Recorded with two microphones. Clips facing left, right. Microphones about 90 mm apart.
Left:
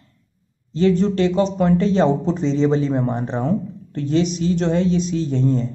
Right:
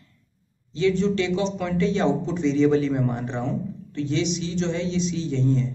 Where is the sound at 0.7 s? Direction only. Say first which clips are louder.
Left 4 dB; 40° left (ahead or behind).